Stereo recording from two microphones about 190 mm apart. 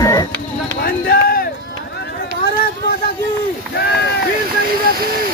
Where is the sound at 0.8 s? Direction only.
55° left (ahead or behind).